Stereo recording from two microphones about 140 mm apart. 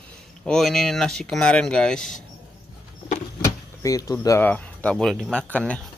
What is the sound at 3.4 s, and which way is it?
Vehicle, 25° left (ahead or behind).